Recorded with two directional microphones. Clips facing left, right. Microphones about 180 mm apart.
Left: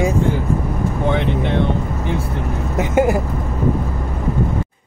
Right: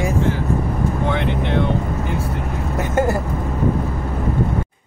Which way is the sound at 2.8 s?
15° left (ahead or behind).